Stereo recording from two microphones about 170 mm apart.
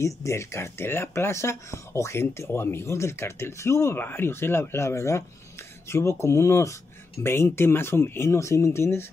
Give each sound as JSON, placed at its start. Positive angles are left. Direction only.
{"t": 0.0, "sound": "speech", "side_deg": 15}